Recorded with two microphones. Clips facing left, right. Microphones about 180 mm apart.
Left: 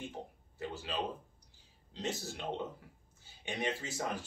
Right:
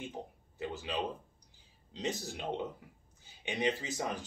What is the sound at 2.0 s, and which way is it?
Speech, 15° right (ahead or behind).